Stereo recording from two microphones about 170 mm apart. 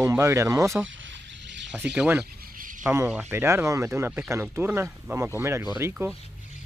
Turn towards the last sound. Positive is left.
turn(degrees=-15)  # may be behind; listen again after turning